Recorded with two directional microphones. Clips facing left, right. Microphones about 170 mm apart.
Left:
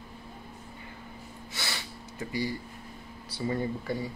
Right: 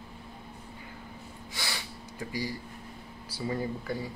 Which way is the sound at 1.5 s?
15° right (ahead or behind).